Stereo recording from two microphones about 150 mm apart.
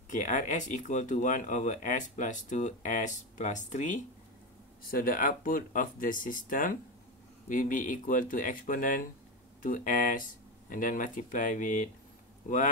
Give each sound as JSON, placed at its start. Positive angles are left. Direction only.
{"t": 0.1, "sound": "speech", "side_deg": 55}
{"t": 4.9, "sound": "speech", "side_deg": 70}